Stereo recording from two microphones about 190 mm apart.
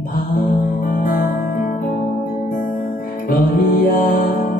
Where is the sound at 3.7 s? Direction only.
50° left (ahead or behind).